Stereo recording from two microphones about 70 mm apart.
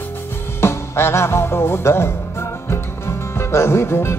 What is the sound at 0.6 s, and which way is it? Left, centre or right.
Music, left.